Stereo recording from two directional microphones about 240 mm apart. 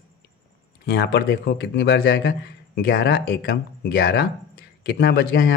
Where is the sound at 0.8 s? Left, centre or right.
Left.